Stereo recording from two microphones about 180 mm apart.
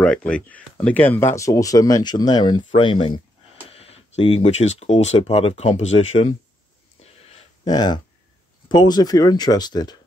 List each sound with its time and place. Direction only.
0.0 s speech: 5° left (ahead or behind); by 6.2 s 35° left (ahead or behind)
7.0 s a sound: 35° left (ahead or behind)
7.6 s speech: 25° left (ahead or behind)